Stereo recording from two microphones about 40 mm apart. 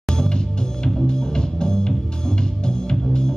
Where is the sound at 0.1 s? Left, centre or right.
Centre.